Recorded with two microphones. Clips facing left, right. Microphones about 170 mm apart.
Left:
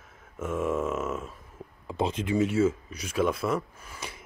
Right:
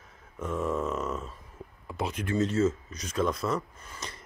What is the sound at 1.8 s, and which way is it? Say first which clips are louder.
Speech: left 4 dB; 25° left (ahead or behind).